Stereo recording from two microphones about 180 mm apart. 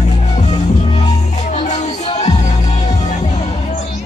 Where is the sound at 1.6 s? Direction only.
40° left (ahead or behind).